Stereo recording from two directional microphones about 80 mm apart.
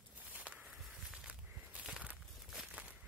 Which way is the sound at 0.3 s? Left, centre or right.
Centre.